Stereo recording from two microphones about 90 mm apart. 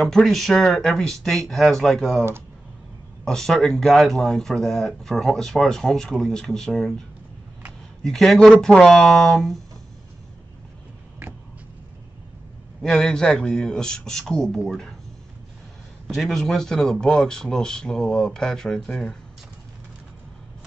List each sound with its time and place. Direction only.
0.0 s speech: 5° left (ahead or behind)
3.3 s speech: 5° left (ahead or behind)
8.0 s speech: 5° left (ahead or behind)
12.8 s a man's voice: 5° left (ahead or behind)
16.1 s speech: 5° left (ahead or behind)